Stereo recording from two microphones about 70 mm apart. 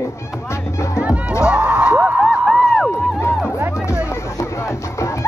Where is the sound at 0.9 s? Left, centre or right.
Centre.